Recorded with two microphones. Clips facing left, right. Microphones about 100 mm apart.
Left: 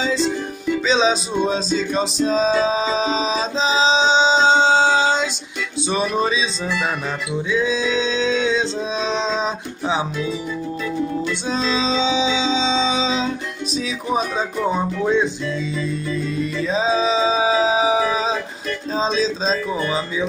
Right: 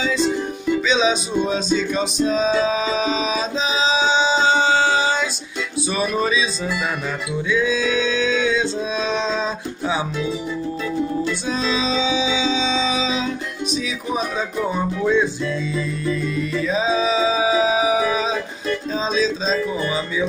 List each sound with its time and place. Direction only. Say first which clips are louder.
0.8 s music: left 3 dB; 35° left (ahead or behind)
7.4 s male singing: right 1 dB; 25° left (ahead or behind)
11.5 s music: left 2 dB; 30° left (ahead or behind)
14.7 s music: even; 25° left (ahead or behind)
16.6 s music: left 1 dB; 30° left (ahead or behind)